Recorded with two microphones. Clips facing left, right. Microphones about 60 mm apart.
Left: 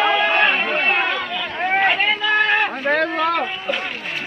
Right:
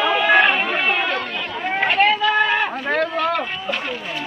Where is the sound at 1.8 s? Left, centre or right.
Centre.